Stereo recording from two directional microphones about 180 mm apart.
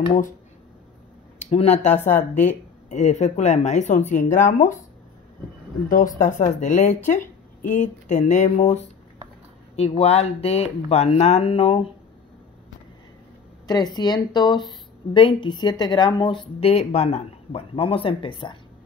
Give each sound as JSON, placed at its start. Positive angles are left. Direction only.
{"t": 1.4, "sound": "speech", "side_deg": 35}
{"t": 5.9, "sound": "speech", "side_deg": 50}
{"t": 13.7, "sound": "speech", "side_deg": 20}